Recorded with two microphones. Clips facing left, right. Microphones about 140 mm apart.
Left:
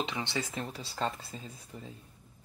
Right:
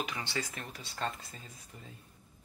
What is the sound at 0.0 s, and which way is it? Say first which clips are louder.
Speech: left 3 dB; 25° left (ahead or behind).